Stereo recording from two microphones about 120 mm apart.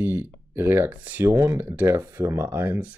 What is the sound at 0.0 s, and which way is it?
Speech, 15° right (ahead or behind).